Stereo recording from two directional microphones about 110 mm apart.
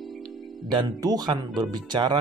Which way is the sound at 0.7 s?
35° right (ahead or behind).